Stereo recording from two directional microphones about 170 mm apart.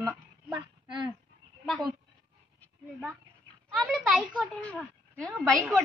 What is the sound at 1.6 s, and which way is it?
Speech, centre (ahead or behind).